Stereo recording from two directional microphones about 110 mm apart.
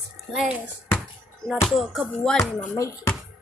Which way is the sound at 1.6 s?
Centre (ahead or behind).